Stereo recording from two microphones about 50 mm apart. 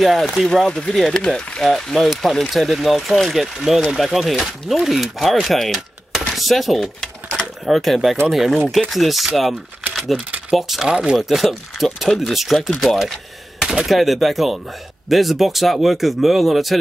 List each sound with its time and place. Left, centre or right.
0.0 s speech: centre
0.7 s speech: centre
0.9 s speech: centre
10.9 s speech: centre
11.1 s speech: centre